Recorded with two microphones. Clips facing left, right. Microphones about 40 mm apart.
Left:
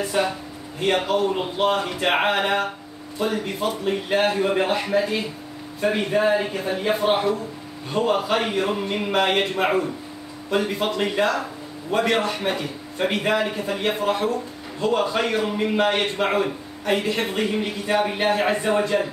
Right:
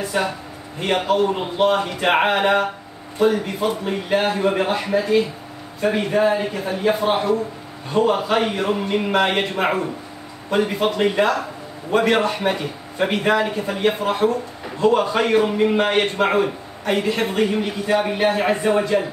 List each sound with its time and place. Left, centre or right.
0.1 s a man's voice: centre
0.7 s a man's voice: centre
3.8 s a man's voice: centre
4.7 s a man's voice: centre
16.8 s a man's voice: centre